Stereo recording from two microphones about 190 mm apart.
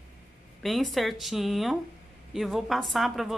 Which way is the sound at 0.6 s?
Centre (ahead or behind).